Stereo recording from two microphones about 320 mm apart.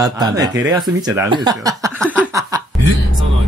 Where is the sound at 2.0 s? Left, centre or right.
Centre.